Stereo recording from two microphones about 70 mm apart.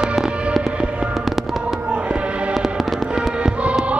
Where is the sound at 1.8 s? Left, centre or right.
Centre.